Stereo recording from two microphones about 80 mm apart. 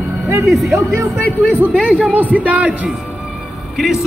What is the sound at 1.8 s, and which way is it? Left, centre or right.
Speech, centre.